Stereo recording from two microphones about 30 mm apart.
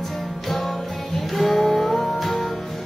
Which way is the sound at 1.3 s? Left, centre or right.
Centre.